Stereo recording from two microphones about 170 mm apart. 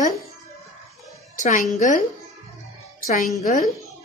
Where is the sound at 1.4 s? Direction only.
50° left (ahead or behind).